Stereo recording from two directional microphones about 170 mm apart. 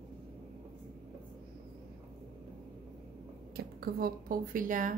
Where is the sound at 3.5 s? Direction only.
65° right (ahead or behind).